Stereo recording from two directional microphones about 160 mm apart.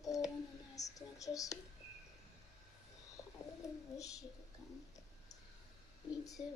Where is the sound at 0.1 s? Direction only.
20° left (ahead or behind).